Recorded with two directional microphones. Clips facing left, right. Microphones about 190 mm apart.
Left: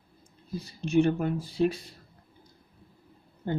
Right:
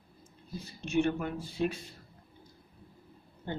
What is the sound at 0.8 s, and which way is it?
Speech, 35° left (ahead or behind).